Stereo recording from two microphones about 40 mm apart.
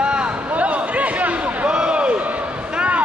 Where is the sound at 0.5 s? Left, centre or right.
Right.